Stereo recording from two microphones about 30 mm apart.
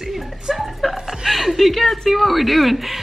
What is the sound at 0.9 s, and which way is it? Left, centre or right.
Chuckle, centre.